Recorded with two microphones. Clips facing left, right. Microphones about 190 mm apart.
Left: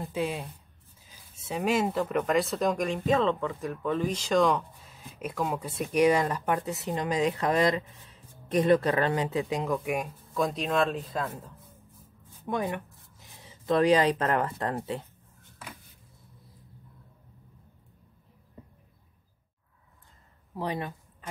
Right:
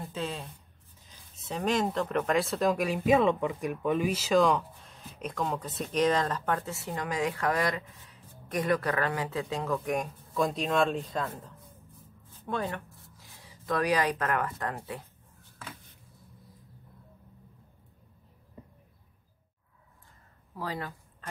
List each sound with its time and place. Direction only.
0.0 s speech: 15° left (ahead or behind)
12.4 s speech: 15° left (ahead or behind)
20.5 s a sound: 20° left (ahead or behind)